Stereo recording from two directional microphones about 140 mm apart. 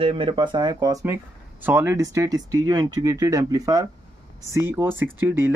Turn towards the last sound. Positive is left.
turn(degrees=-15)  # may be behind; listen again after turning